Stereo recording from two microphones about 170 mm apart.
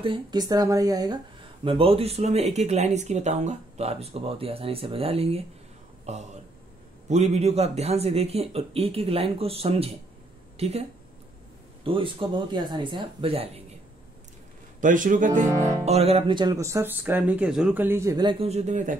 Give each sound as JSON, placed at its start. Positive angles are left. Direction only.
{"t": 0.0, "sound": "speech", "side_deg": -25}
{"t": 14.8, "sound": "a man's voice", "side_deg": -50}
{"t": 15.8, "sound": "speech", "side_deg": -40}
{"t": 18.4, "sound": "a man's voice", "side_deg": -40}